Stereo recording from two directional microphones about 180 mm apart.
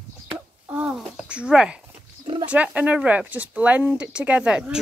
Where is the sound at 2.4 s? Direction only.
5° right (ahead or behind).